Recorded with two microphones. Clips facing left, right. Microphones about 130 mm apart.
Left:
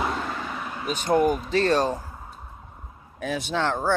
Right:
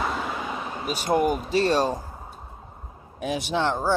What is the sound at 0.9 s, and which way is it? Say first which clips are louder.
Speech: left 1 dB; 10° right (ahead or behind).